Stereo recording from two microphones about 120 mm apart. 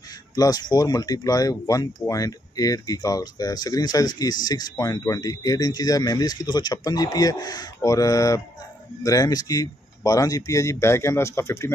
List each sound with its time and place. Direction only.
0.4 s speech: 30° left (ahead or behind)